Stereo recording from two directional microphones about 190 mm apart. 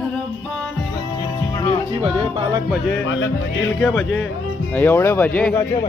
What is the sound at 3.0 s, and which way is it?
Speech, 75° left (ahead or behind).